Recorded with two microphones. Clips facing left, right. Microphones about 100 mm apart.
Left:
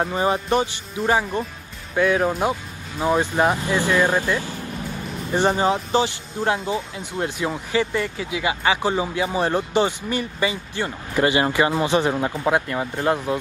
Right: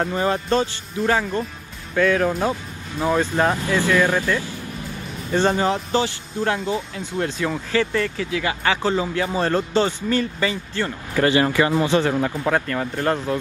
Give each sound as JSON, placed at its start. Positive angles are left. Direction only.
{"t": 0.1, "sound": "speech", "side_deg": 20}
{"t": 5.3, "sound": "speech", "side_deg": 15}